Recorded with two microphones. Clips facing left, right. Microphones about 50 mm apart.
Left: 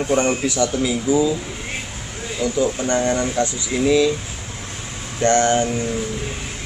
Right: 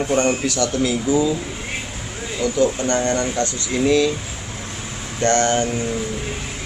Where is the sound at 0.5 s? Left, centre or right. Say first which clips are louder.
Left 1 dB; centre.